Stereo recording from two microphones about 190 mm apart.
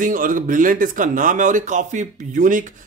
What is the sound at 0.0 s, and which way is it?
Speech, 45° right (ahead or behind).